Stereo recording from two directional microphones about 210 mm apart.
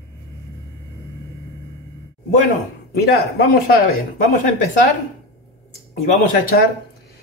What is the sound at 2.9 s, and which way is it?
Speech, 45° left (ahead or behind).